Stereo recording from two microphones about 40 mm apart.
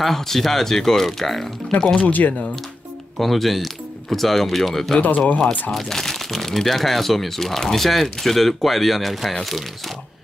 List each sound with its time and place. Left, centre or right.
0.0 s speech: centre
2.0 s speech: left
3.2 s speech: centre
4.9 s speech: left
5.7 s speech: centre